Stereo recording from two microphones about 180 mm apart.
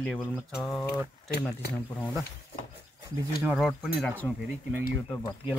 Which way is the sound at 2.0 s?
Centre (ahead or behind).